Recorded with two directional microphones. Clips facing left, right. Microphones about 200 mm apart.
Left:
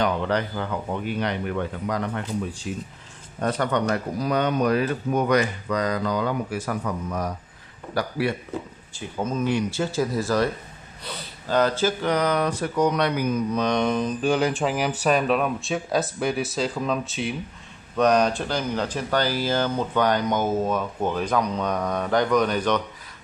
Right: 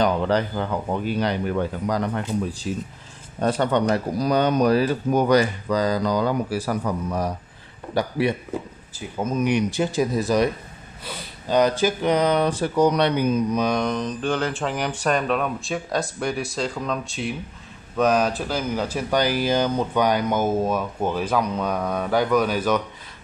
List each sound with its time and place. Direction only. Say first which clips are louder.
0.0 s speech: right 3 dB; 35° right (ahead or behind)
7.9 s speech: right 3 dB; 20° right (ahead or behind)
8.9 s speech: right 2 dB; 10° right (ahead or behind); by 13.4 s 30° right (ahead or behind)
13.5 s speech: right 1 dB; 10° right (ahead or behind)
13.7 s speech: left 1 dB; 5° left (ahead or behind)